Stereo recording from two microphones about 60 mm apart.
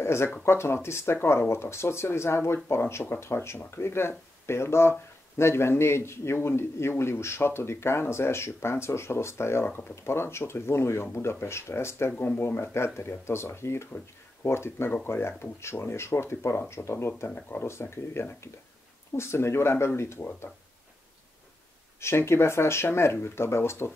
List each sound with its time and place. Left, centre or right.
0.0 s a man's voice: left
12.2 s a man's voice: left
22.0 s a man's voice: left